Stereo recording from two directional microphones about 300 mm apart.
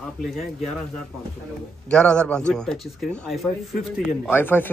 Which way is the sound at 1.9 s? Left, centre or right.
Centre.